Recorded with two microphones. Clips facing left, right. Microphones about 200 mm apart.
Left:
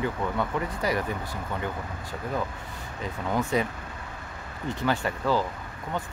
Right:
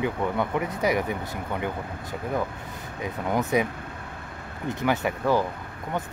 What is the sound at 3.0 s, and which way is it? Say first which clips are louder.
Speech: right 2 dB; 15° right (ahead or behind).